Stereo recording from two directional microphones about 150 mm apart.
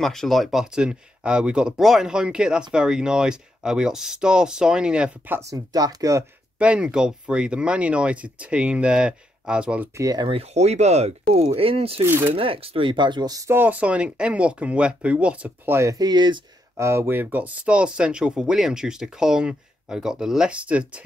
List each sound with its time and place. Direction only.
0.0 s speech: centre (ahead or behind)
5.7 s speech: 25° right (ahead or behind)
6.6 s speech: 5° right (ahead or behind)
9.9 s speech: 20° right (ahead or behind)
10.2 s speech: 40° right (ahead or behind)
12.0 s speech: 15° right (ahead or behind)
12.4 s speech: 40° right (ahead or behind)
16.7 s speech: 20° right (ahead or behind)